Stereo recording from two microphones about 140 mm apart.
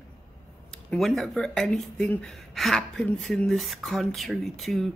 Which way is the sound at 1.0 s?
Centre (ahead or behind).